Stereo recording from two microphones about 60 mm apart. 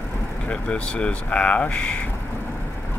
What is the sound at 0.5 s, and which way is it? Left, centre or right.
Speech, centre.